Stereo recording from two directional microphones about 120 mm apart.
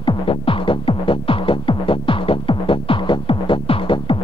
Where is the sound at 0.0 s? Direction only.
45° left (ahead or behind).